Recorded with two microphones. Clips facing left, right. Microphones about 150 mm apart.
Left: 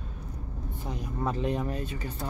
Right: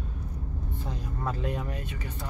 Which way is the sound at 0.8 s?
15° left (ahead or behind).